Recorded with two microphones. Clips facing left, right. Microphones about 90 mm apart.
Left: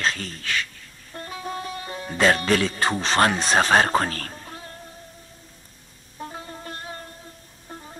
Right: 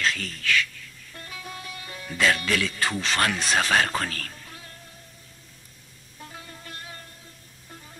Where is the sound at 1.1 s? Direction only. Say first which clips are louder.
Left 8 dB; 35° left (ahead or behind).